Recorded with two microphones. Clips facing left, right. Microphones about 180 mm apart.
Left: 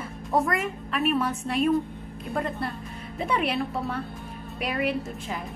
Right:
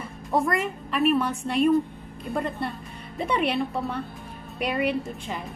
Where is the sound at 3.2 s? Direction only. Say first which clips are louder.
Right 2 dB; centre (ahead or behind).